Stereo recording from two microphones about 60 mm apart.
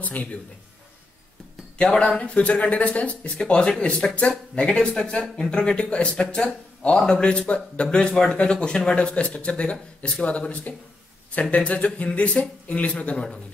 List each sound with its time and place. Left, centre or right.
0.0 s speech: left
1.8 s speech: centre